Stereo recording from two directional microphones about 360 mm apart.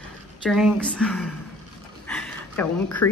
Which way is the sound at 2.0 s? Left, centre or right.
Centre.